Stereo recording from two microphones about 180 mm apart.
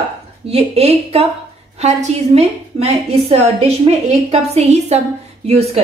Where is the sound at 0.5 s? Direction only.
35° right (ahead or behind).